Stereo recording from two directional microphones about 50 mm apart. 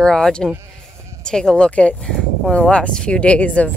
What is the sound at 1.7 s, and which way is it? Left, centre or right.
Speech, left.